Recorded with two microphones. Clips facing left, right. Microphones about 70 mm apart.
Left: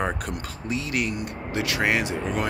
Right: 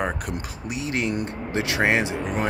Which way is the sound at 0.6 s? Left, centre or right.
Right.